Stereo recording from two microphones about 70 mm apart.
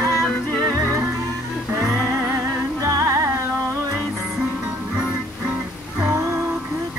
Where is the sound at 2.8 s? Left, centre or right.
Right.